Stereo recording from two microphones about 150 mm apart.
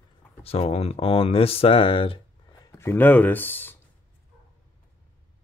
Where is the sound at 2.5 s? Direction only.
20° left (ahead or behind).